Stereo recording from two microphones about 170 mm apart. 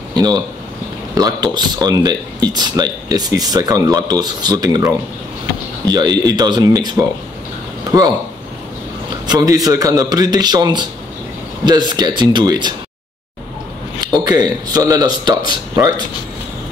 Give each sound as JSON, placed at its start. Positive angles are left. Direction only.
{"t": 0.1, "sound": "a sound", "side_deg": -25}
{"t": 1.1, "sound": "speech", "side_deg": -25}
{"t": 9.2, "sound": "speech", "side_deg": -20}
{"t": 14.0, "sound": "speech", "side_deg": -25}